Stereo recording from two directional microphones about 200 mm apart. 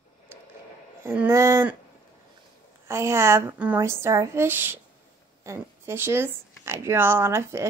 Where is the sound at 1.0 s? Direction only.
10° right (ahead or behind).